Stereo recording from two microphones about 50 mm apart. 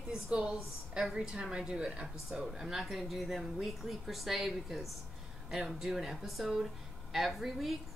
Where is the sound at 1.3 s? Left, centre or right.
Centre.